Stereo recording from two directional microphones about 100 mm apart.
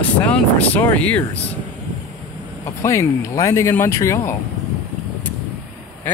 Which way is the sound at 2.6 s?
30° left (ahead or behind).